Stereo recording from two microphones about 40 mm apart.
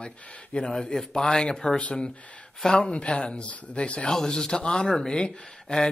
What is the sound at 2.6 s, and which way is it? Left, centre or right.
Speech, left.